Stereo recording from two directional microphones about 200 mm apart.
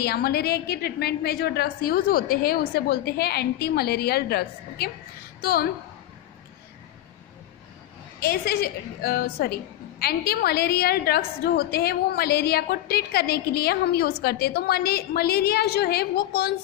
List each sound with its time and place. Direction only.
0.0 s a woman's voice: 50° left (ahead or behind)
8.2 s a woman's voice: 50° left (ahead or behind)